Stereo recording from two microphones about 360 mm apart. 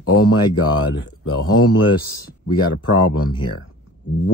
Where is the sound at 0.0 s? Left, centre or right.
Left.